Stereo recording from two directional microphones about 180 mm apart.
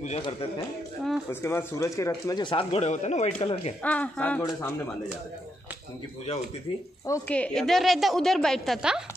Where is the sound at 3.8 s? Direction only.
10° left (ahead or behind).